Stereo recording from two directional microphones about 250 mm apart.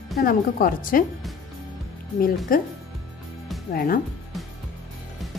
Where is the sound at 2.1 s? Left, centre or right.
Left.